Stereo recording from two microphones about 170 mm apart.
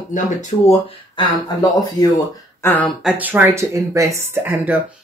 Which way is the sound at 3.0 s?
5° right (ahead or behind).